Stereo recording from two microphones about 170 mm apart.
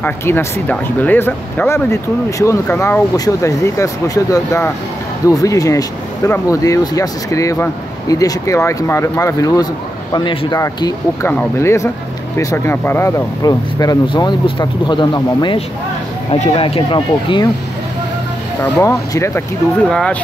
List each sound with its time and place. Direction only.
0.0 s speech: 15° left (ahead or behind)
11.2 s speech: 15° left (ahead or behind); by 17.5 s 30° left (ahead or behind)
18.6 s speech: 15° left (ahead or behind)
19.9 s speech: 5° left (ahead or behind)